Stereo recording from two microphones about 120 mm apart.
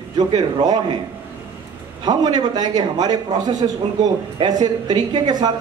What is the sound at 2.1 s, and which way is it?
A man's voice, 35° right (ahead or behind).